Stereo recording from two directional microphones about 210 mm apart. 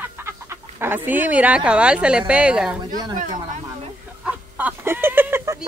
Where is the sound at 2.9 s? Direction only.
20° right (ahead or behind).